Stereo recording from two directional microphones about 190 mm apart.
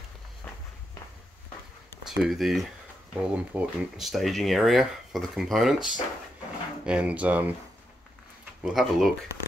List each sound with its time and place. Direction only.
2.0 s speech: centre (ahead or behind)
6.9 s speech: 5° right (ahead or behind)
8.6 s speech: centre (ahead or behind)